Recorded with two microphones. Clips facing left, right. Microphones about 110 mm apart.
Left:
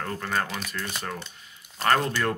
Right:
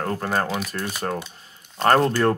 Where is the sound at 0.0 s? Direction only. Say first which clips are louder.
Right 5 dB; 40° right (ahead or behind).